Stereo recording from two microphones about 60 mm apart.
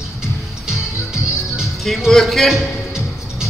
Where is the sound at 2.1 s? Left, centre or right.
Centre.